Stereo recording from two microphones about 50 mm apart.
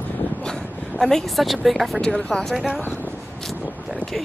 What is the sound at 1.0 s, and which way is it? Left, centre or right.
Speech, centre.